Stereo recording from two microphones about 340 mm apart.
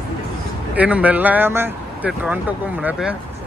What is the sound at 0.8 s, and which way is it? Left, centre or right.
Speech, centre.